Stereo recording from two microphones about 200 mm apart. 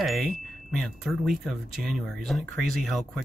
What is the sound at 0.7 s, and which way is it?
Speech, centre (ahead or behind).